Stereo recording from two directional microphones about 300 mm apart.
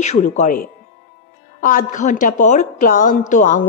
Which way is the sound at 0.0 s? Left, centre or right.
Left.